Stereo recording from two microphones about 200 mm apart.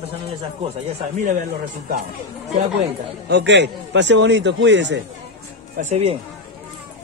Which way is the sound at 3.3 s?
55° right (ahead or behind).